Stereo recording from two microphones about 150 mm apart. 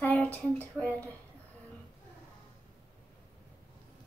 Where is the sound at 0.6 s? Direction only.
10° left (ahead or behind).